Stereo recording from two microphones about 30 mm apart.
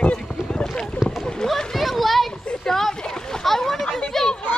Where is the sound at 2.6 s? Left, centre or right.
Centre.